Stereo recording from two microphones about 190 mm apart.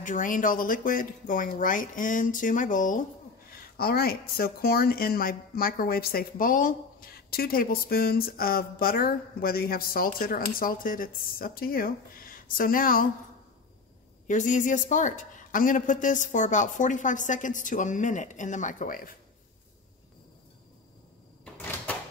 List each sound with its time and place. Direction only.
0.0 s speech: 45° left (ahead or behind)
3.7 s speech: 55° left (ahead or behind)
14.2 s a woman's voice: 40° left (ahead or behind)
21.5 s door: 10° left (ahead or behind)